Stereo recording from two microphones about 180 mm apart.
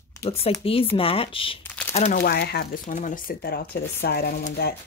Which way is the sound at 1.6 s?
10° left (ahead or behind).